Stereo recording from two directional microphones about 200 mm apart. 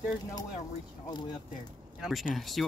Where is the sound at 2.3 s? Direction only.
Centre (ahead or behind).